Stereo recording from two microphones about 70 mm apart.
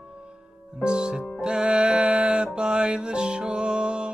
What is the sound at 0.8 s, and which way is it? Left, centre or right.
Music, centre.